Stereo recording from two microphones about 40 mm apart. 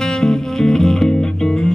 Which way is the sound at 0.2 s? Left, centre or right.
Centre.